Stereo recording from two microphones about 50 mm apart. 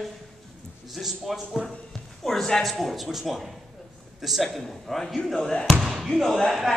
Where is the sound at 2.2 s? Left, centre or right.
Centre.